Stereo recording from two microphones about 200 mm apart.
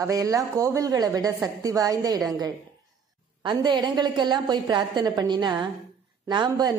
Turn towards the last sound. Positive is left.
turn(degrees=-20)  # may be behind; listen again after turning